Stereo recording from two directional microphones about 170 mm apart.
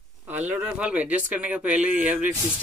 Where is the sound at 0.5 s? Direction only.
10° right (ahead or behind).